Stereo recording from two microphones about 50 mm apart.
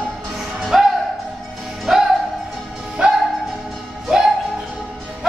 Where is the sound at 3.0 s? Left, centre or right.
Right.